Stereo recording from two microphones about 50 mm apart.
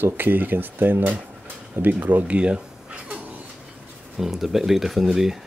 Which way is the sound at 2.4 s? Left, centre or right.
Right.